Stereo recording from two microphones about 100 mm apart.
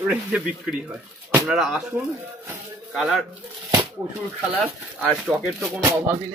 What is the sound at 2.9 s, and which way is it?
Speech, centre (ahead or behind).